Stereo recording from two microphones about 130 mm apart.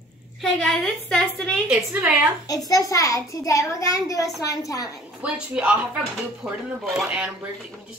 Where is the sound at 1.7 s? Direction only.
10° right (ahead or behind).